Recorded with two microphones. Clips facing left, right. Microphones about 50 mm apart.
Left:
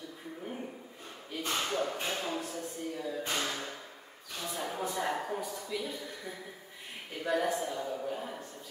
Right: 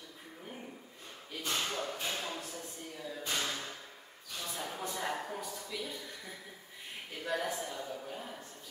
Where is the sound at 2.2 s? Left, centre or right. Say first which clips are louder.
Left 5 dB; centre.